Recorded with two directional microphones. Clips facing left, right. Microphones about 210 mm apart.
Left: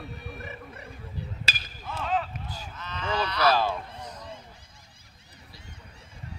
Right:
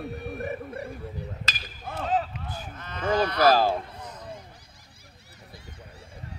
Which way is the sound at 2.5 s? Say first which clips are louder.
Right 2 dB; 55° right (ahead or behind).